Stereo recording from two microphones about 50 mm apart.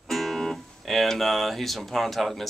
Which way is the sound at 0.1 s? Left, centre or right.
Centre.